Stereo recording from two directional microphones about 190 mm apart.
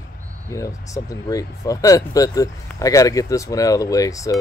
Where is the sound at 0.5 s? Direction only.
15° left (ahead or behind).